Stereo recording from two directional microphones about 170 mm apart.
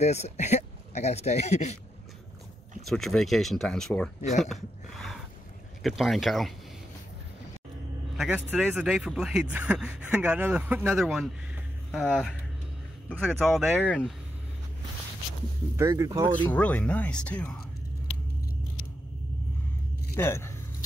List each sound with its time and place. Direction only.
0.0 s a man's voice: 40° left (ahead or behind)
2.8 s speech: centre (ahead or behind)
8.2 s speech: 10° right (ahead or behind)
11.9 s speech: 5° left (ahead or behind)
13.6 s speech: 10° right (ahead or behind)
15.7 s speech: 20° right (ahead or behind)
16.3 s speech: 10° left (ahead or behind)
20.2 s speech: 15° left (ahead or behind)